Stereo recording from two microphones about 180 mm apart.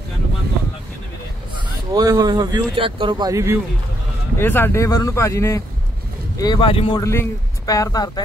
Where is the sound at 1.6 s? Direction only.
20° right (ahead or behind).